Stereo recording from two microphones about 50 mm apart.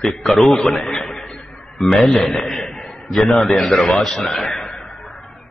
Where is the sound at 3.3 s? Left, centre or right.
Centre.